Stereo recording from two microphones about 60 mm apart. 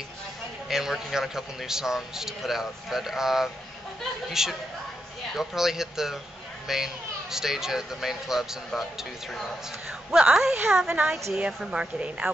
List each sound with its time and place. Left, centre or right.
0.7 s a man's voice: centre